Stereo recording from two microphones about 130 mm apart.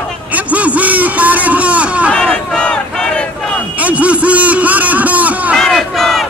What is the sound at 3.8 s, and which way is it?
A man's voice, 10° right (ahead or behind).